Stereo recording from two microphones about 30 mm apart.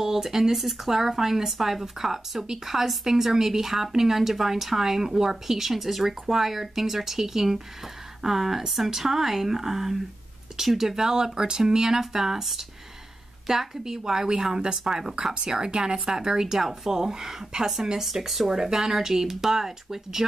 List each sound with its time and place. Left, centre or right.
0.0 s a woman's voice: centre
18.0 s speech: centre
18.5 s a woman's voice: centre